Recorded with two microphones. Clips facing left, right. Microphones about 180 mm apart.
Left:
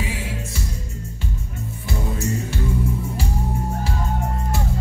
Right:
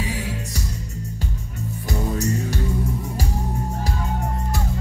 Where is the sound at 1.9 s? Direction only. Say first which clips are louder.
Right 2 dB; 40° right (ahead or behind).